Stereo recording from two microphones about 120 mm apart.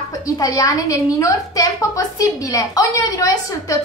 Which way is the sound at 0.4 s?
30° left (ahead or behind).